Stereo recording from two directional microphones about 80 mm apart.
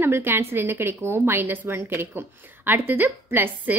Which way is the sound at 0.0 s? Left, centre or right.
Right.